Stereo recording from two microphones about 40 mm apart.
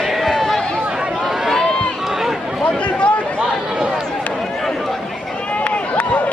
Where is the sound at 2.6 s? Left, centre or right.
Left.